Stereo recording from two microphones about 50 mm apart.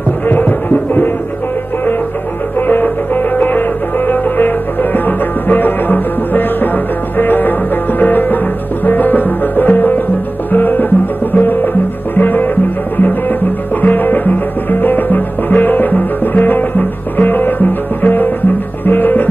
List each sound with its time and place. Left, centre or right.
0.3 s music: left
2.6 s music: left